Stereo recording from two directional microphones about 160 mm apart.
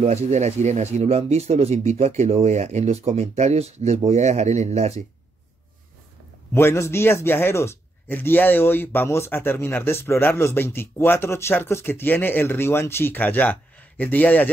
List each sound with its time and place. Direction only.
0.0 s speech: 45° right (ahead or behind)
6.5 s speech: 15° left (ahead or behind)